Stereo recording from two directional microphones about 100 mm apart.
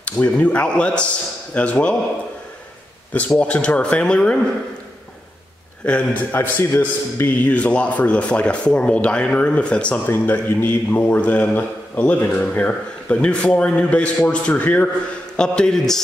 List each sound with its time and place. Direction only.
0.0 s a man's voice: 15° left (ahead or behind)
3.3 s a man's voice: 15° left (ahead or behind)
5.9 s a man's voice: 15° left (ahead or behind)